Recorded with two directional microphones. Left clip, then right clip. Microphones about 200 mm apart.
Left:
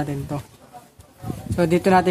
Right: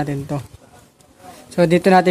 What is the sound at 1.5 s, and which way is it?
Speech, 25° right (ahead or behind).